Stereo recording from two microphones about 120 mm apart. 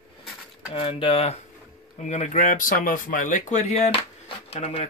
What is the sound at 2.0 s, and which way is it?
Speech, 80° left.